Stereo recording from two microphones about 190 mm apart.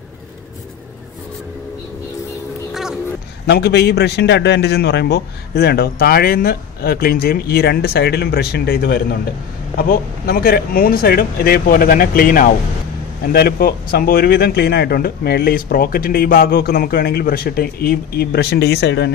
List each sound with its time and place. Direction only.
2.7 s music: 5° right (ahead or behind)
3.4 s a man's voice: 60° left (ahead or behind)